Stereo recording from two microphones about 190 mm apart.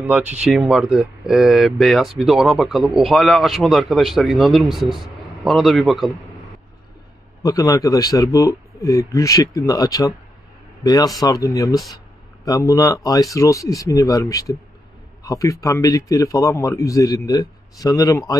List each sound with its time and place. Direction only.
0.0 s speech: 10° right (ahead or behind)
7.4 s a man's voice: 20° left (ahead or behind)